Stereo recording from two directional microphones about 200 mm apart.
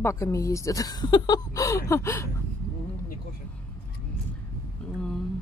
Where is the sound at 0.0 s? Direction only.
15° left (ahead or behind).